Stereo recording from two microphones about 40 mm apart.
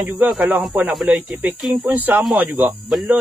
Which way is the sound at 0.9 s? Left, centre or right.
Centre.